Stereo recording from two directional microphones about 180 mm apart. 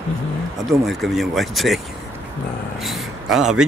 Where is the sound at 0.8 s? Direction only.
Centre (ahead or behind).